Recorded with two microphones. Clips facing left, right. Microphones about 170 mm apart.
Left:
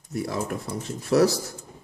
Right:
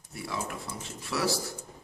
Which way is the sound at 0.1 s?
45° left (ahead or behind).